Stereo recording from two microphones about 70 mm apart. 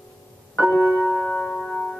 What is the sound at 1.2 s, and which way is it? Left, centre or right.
Music, centre.